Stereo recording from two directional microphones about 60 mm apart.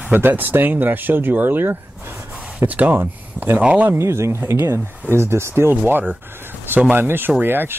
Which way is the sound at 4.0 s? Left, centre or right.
Right.